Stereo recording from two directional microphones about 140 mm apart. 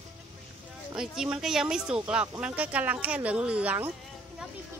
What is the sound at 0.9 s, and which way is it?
Speech, 5° right (ahead or behind).